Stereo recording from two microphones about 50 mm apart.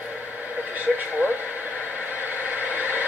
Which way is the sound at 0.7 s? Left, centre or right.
Right.